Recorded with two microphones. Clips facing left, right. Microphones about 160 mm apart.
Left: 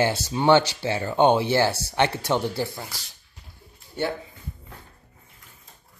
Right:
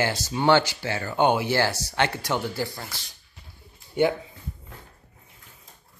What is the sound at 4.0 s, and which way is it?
Speech, 15° right (ahead or behind).